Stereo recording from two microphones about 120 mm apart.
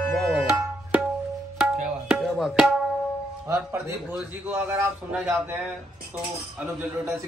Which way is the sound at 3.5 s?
20° right (ahead or behind).